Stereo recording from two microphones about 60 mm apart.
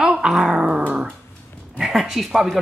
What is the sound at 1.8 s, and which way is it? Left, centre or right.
Speech, centre.